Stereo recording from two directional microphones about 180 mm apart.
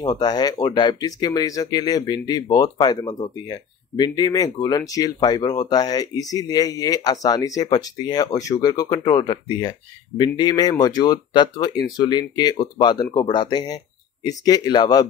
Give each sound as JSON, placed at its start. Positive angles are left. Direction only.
{"t": 0.0, "sound": "speech", "side_deg": 25}